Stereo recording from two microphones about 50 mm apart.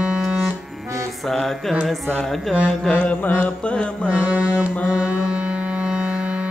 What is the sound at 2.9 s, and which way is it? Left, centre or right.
Mantra, left.